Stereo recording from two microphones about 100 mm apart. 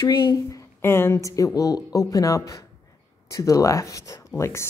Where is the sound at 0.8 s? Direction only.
25° left (ahead or behind).